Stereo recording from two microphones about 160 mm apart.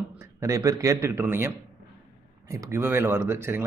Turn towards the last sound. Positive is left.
turn(degrees=-15)  # may be behind; listen again after turning